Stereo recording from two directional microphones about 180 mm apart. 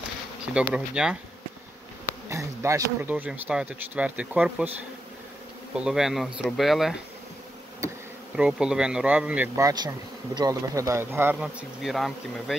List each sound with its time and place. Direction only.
0.7 s speech: 5° right (ahead or behind)
2.2 s speech: 15° right (ahead or behind)
5.8 s speech: 5° right (ahead or behind)
8.4 s speech: 5° right (ahead or behind)
9.6 s speech: 20° right (ahead or behind); by 12.5 s centre (ahead or behind)